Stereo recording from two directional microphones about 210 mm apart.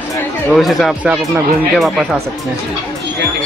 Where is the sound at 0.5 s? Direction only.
Centre (ahead or behind).